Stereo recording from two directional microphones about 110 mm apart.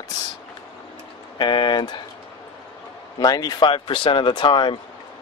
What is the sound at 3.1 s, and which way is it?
Speech, 35° left (ahead or behind).